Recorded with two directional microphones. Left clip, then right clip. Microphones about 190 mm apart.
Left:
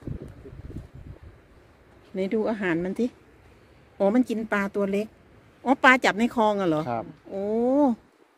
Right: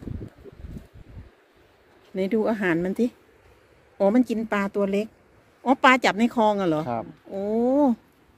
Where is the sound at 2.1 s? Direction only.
10° right (ahead or behind).